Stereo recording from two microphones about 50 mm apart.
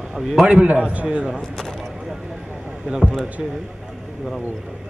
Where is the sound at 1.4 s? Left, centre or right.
Centre.